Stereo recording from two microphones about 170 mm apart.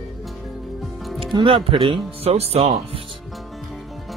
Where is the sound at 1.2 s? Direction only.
30° right (ahead or behind).